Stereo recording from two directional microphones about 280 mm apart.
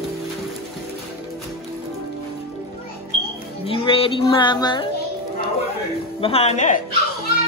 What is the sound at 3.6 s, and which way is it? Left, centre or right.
Music, centre.